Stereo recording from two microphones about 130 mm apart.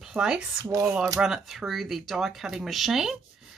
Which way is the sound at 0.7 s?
25° right (ahead or behind).